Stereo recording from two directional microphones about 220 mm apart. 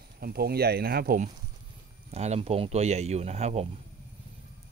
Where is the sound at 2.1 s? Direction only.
30° right (ahead or behind).